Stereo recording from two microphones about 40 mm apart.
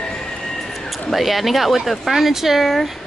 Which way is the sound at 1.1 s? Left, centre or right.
Centre.